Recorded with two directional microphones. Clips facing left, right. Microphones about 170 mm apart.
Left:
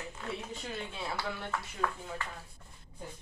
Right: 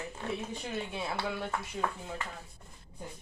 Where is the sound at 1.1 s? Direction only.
25° right (ahead or behind).